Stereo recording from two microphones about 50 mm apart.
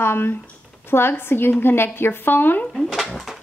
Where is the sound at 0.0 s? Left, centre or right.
Left.